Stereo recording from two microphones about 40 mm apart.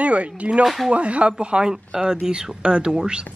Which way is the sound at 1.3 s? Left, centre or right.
Right.